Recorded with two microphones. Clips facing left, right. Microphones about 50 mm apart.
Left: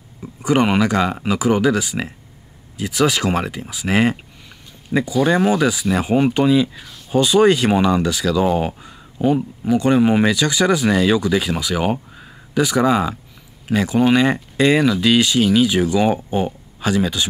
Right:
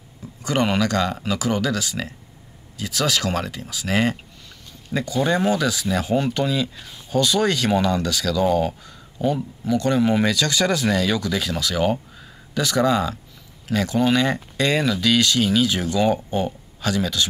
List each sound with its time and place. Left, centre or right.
0.4 s speech: centre